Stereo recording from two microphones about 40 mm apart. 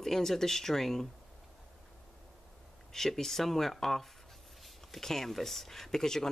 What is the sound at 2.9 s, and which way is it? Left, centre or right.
Speech, centre.